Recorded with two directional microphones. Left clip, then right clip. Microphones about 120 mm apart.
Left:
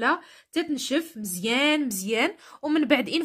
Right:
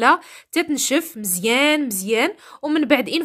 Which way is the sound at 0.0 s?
60° right (ahead or behind).